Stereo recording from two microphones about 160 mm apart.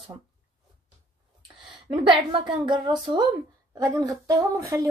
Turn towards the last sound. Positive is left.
turn(degrees=-20)  # may be behind; listen again after turning